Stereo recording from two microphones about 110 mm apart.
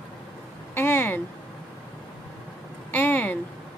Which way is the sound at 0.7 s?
20° left (ahead or behind).